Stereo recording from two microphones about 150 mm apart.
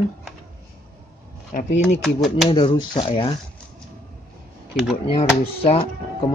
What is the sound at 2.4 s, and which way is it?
Speech, 35° left (ahead or behind).